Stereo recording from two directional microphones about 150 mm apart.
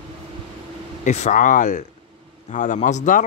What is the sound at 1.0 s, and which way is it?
Speech, 50° left (ahead or behind).